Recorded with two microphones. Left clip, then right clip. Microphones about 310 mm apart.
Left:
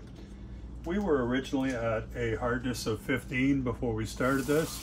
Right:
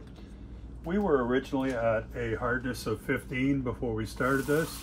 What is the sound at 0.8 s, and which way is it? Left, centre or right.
Speech, centre.